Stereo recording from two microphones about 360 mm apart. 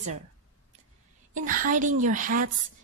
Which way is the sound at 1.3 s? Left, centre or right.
Right.